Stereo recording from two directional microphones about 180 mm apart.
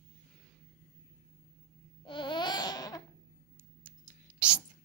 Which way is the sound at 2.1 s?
25° left (ahead or behind).